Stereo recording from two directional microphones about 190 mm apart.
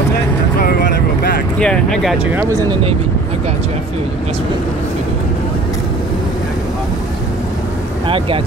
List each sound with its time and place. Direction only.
0.6 s vehicle: 55° left (ahead or behind)
1.6 s speech: 5° left (ahead or behind)
2.3 s speech: 20° right (ahead or behind)